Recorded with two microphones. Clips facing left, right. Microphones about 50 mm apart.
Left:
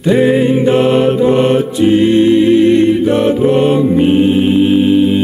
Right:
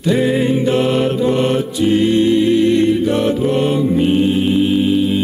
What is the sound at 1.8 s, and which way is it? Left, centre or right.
Music, centre.